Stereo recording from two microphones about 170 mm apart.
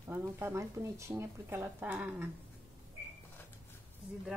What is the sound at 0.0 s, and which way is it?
Speech, 15° right (ahead or behind).